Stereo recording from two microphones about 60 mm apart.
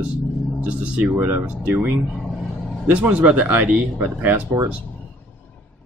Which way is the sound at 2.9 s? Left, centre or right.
Right.